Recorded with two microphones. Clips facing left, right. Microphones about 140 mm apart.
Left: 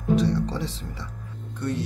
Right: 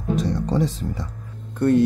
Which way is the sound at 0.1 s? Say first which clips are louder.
Even; 45° right (ahead or behind).